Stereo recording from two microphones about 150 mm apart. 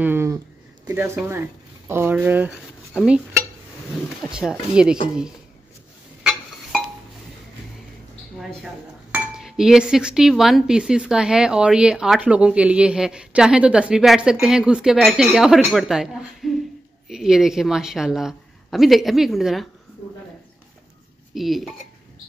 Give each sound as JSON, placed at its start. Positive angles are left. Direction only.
{"t": 0.0, "sound": "a sound", "side_deg": -15}
{"t": 0.8, "sound": "speech", "side_deg": -15}
{"t": 4.2, "sound": "speech", "side_deg": -5}
{"t": 9.1, "sound": "speech", "side_deg": -5}
{"t": 21.4, "sound": "speech", "side_deg": 0}